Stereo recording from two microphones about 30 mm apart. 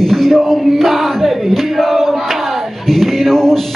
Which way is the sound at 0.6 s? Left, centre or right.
Centre.